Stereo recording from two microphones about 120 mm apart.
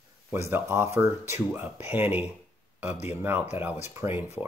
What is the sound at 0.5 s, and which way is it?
Speech, 20° right (ahead or behind).